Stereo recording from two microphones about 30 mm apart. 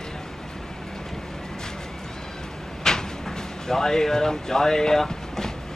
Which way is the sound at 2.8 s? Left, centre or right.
Centre.